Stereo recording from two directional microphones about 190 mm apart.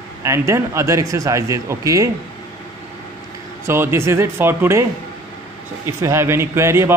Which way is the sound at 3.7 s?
15° right (ahead or behind).